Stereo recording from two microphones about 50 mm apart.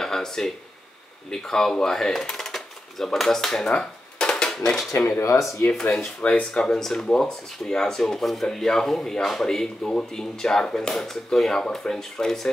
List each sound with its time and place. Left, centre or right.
0.0 s a sound: centre
1.3 s speech: centre
3.7 s dishes: centre
5.3 s speech: left
5.7 s speech: centre